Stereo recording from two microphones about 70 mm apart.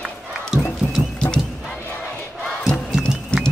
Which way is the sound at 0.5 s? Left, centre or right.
Centre.